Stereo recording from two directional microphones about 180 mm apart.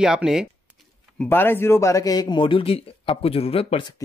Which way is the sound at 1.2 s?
10° left (ahead or behind).